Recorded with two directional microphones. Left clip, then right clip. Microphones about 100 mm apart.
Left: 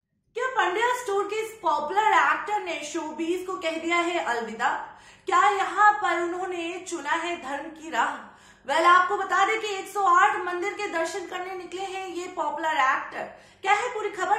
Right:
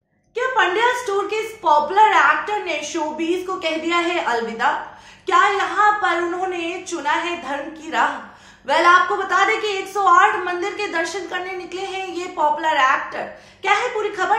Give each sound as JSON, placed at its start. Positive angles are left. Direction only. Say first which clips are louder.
{"t": 0.4, "sound": "a woman's voice", "louder": "right 7 dB", "side_deg": -25}